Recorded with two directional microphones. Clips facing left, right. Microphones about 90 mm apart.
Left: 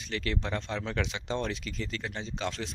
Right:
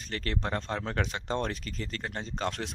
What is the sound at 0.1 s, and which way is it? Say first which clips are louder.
Speech: even; 45° right (ahead or behind).